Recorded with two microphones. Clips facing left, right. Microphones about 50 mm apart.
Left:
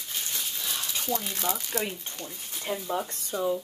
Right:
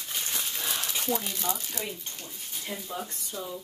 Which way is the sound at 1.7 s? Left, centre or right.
Left.